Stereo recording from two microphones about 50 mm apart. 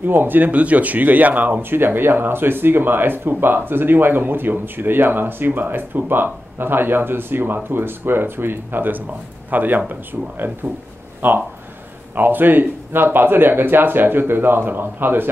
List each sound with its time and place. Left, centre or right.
0.0 s a man's voice: right